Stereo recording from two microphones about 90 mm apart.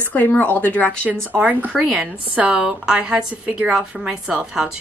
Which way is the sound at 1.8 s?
5° right (ahead or behind).